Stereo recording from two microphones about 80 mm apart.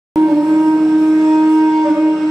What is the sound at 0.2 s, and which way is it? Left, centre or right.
Music, centre.